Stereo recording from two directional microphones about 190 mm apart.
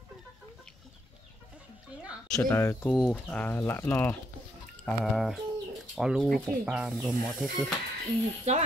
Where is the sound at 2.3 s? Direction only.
15° left (ahead or behind).